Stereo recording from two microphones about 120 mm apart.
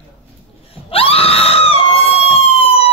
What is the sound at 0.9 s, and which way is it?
Screaming, 50° left (ahead or behind).